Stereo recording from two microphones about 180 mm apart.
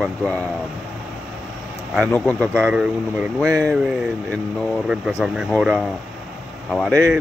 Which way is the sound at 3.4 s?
20° right (ahead or behind).